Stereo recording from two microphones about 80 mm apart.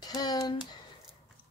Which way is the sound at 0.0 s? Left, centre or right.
Left.